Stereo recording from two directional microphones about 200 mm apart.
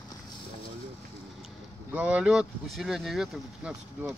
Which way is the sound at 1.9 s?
5° right (ahead or behind).